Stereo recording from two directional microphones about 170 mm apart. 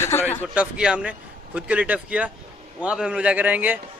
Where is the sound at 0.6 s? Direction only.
5° right (ahead or behind).